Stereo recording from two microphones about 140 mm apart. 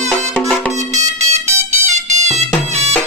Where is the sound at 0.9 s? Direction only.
55° right (ahead or behind).